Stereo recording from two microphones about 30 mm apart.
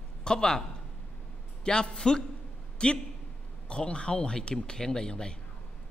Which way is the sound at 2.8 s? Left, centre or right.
Left.